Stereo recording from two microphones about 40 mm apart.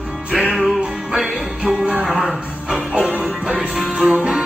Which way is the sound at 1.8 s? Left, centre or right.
Right.